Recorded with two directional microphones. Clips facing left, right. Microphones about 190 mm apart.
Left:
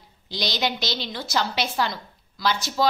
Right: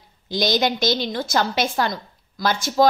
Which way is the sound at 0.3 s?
45° right (ahead or behind).